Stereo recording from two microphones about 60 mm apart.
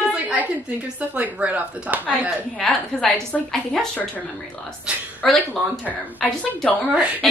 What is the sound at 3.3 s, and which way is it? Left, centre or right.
Speech, centre.